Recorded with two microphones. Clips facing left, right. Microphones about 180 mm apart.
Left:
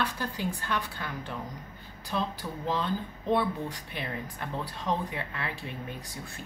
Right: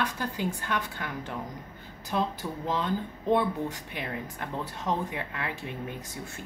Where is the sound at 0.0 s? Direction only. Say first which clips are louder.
Right 1 dB; 15° right (ahead or behind).